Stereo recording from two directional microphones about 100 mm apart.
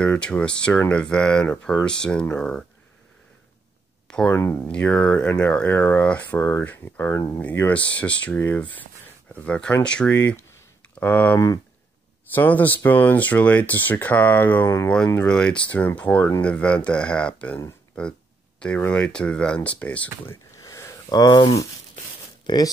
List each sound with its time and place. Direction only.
0.0 s speech: 10° left (ahead or behind)
4.3 s speech: 25° left (ahead or behind)
4.6 s speech: 15° left (ahead or behind)
10.1 s speech: 20° left (ahead or behind)
11.3 s speech: 35° left (ahead or behind)
12.4 s speech: 15° left (ahead or behind)
20.2 s a sound: 30° left (ahead or behind)